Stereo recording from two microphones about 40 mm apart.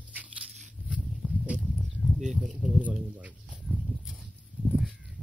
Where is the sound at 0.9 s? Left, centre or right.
Right.